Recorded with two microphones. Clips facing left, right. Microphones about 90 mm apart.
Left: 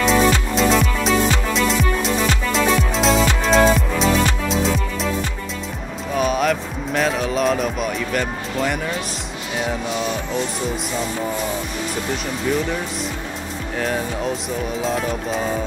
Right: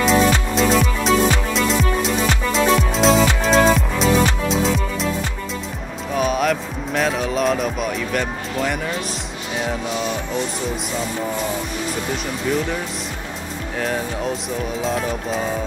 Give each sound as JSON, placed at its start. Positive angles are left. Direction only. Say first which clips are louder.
{"t": 0.0, "sound": "music", "louder": "even", "side_deg": 0}
{"t": 6.1, "sound": "music", "louder": "even", "side_deg": 0}
{"t": 13.7, "sound": "music", "louder": "even", "side_deg": 0}